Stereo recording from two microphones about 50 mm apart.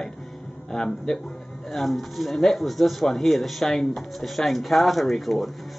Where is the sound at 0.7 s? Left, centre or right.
Centre.